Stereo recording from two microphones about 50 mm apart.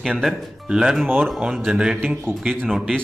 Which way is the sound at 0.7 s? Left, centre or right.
Centre.